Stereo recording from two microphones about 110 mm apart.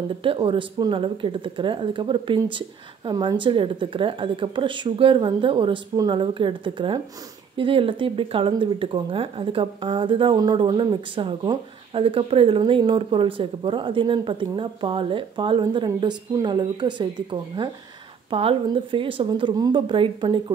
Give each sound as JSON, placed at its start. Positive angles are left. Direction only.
{"t": 0.2, "sound": "speech", "side_deg": -50}
{"t": 18.3, "sound": "speech", "side_deg": -55}